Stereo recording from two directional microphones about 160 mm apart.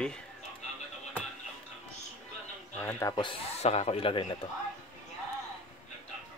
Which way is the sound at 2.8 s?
15° left (ahead or behind).